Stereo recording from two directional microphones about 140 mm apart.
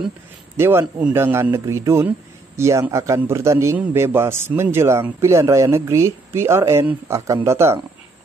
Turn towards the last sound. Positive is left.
turn(degrees=-20)  # may be behind; listen again after turning